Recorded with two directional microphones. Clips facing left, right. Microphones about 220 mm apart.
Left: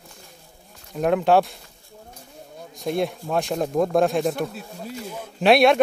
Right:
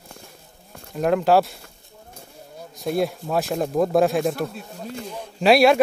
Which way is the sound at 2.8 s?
Centre (ahead or behind).